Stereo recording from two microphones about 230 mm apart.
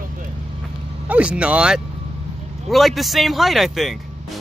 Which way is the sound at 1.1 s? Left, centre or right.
Centre.